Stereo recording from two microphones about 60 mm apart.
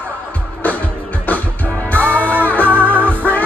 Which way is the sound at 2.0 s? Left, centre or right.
Left.